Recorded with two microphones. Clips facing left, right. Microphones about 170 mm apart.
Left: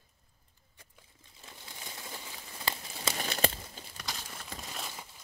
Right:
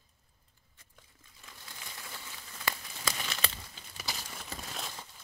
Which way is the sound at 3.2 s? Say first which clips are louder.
Left 7 dB; 40° left (ahead or behind).